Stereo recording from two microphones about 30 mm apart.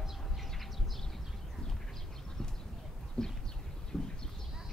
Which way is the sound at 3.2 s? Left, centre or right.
Left.